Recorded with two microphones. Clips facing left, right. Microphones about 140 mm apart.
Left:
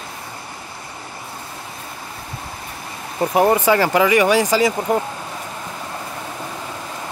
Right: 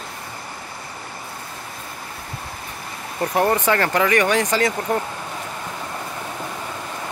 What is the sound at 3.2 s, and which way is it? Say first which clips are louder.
Speech: left 4 dB; 15° left (ahead or behind).